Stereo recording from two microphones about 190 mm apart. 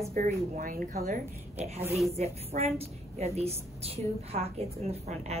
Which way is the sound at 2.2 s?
35° right (ahead or behind).